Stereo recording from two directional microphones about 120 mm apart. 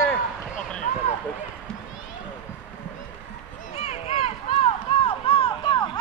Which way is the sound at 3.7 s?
65° left (ahead or behind).